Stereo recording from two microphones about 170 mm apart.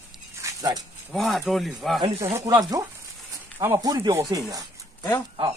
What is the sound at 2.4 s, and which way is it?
Speech, 20° right (ahead or behind).